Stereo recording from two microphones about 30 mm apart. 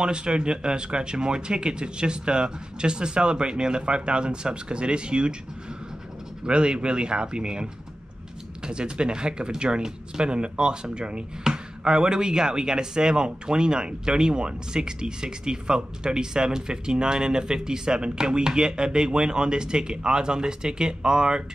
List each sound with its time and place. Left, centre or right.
0.0 s speech: right
6.4 s speech: right